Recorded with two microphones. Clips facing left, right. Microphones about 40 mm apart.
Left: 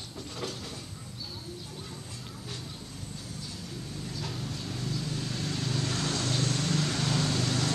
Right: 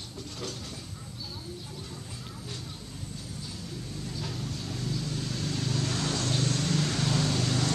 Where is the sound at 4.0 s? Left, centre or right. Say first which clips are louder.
Right 1 dB; centre.